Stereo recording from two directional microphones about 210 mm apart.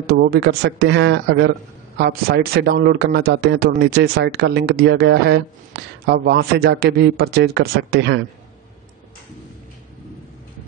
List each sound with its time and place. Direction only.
0.1 s speech: 50° right (ahead or behind)